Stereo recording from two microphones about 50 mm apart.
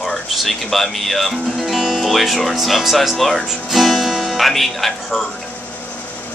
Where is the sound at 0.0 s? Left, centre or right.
Centre.